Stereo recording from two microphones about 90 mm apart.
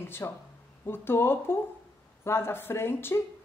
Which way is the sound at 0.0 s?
25° left (ahead or behind).